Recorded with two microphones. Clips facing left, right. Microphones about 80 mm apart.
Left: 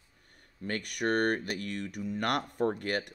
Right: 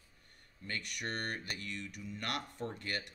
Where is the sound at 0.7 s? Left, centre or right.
Left.